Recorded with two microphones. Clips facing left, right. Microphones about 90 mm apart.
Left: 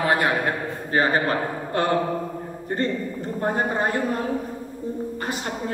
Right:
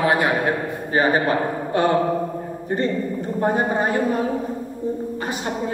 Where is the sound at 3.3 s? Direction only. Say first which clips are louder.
Right 3 dB; 15° right (ahead or behind).